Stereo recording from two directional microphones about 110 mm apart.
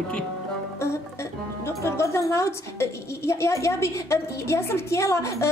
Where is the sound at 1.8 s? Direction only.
25° left (ahead or behind).